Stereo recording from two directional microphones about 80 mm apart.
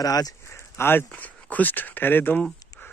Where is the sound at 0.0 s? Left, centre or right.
Left.